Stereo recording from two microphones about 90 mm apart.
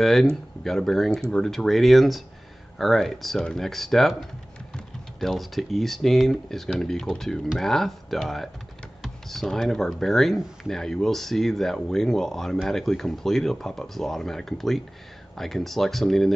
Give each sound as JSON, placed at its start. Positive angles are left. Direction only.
{"t": 0.0, "sound": "speech", "side_deg": 5}